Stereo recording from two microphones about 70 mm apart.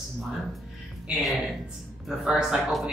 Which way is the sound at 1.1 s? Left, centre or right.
Centre.